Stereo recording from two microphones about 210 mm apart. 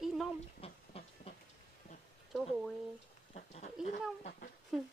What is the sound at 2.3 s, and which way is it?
Speech, centre (ahead or behind).